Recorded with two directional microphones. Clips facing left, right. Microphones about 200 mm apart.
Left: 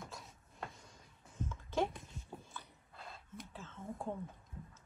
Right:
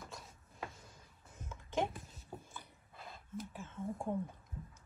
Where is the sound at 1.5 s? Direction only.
15° right (ahead or behind).